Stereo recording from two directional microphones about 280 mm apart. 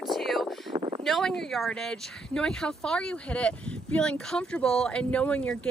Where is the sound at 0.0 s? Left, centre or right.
Centre.